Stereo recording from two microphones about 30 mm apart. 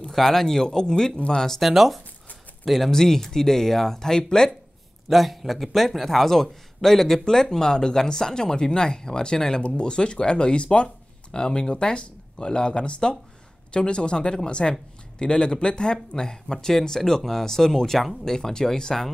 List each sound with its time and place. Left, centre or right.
0.1 s a man's voice: centre
0.7 s a man's voice: left
1.6 s speech: centre
2.9 s a man's voice: centre
5.1 s a man's voice: centre
16.5 s a man's voice: centre
17.9 s speech: centre
18.2 s a man's voice: centre